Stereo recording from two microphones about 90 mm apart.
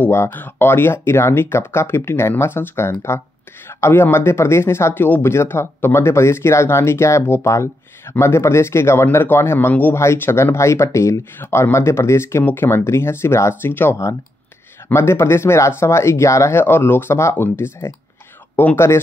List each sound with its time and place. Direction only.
0.0 s speech: 25° left (ahead or behind)